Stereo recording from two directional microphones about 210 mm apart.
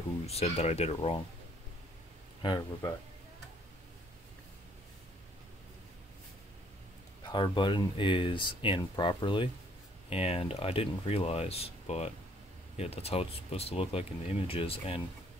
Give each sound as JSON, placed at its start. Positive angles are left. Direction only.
{"t": 0.3, "sound": "speech", "side_deg": 30}
{"t": 2.4, "sound": "speech", "side_deg": 20}
{"t": 7.2, "sound": "speech", "side_deg": 20}